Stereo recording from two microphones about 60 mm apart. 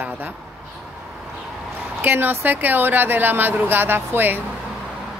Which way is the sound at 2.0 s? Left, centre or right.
Right.